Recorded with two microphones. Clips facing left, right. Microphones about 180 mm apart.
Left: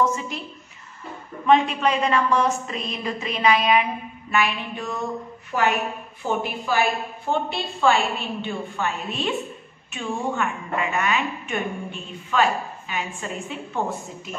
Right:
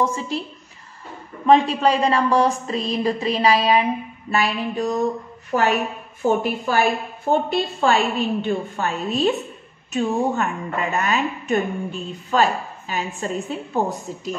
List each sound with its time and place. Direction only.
0.0 s a woman's voice: 30° right (ahead or behind)
1.4 s a woman's voice: 35° right (ahead or behind)